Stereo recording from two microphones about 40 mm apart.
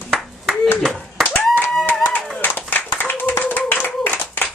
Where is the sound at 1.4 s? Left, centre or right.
Centre.